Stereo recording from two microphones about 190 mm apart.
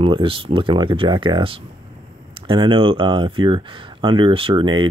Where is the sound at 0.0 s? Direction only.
25° right (ahead or behind).